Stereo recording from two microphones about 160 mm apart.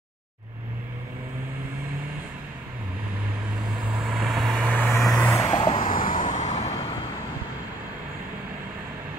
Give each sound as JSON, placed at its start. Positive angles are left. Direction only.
{"t": 3.9, "sound": "vehicle", "side_deg": 0}
{"t": 5.5, "sound": "vehicle", "side_deg": 35}
{"t": 5.9, "sound": "vehicle", "side_deg": 60}